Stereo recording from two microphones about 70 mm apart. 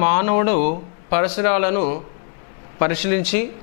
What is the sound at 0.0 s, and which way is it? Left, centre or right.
Speech, centre.